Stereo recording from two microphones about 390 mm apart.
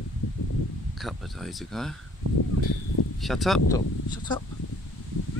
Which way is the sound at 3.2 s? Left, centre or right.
Centre.